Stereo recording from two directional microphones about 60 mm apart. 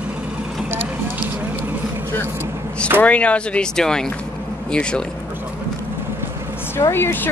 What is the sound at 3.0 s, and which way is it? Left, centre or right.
Speech, left.